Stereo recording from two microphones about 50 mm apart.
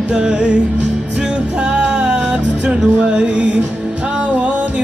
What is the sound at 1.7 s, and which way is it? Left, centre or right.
Music, centre.